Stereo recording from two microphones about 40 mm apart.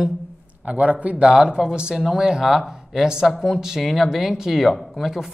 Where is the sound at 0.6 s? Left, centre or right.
Right.